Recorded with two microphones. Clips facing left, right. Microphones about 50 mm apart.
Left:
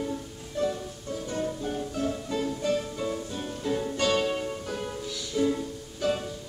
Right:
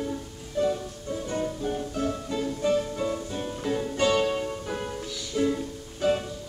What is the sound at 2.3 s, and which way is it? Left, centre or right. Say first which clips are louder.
Music: right 3 dB; centre.